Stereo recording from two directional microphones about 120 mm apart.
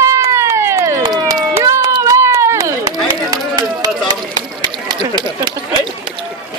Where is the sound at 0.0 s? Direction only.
25° right (ahead or behind).